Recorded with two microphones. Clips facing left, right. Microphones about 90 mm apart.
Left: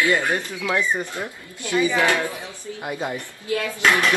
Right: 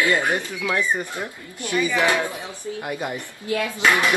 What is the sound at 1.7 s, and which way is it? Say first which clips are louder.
Speech: left 2 dB; 20° left (ahead or behind).